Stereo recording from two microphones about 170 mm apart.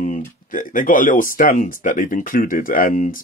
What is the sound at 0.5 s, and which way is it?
Speech, 55° left (ahead or behind).